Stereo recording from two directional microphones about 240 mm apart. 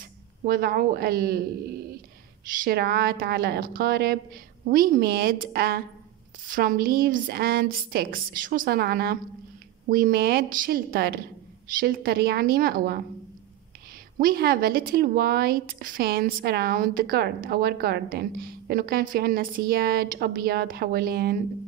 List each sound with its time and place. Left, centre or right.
0.5 s a woman's voice: right
2.6 s a woman's voice: right
14.2 s a woman's voice: right